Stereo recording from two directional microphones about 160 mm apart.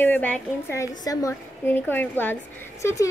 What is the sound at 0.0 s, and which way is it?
A woman's voice, 10° left (ahead or behind).